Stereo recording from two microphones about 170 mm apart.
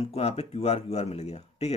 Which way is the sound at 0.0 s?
35° left (ahead or behind).